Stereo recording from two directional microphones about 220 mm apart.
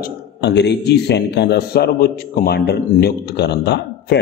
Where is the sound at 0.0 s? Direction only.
50° left (ahead or behind).